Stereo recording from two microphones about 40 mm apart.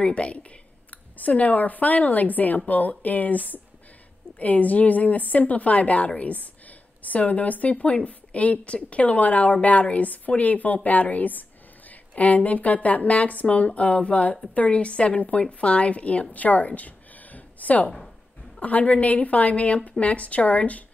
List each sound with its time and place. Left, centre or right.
0.0 s a woman's voice: left
17.8 s speech: centre
18.6 s a woman's voice: left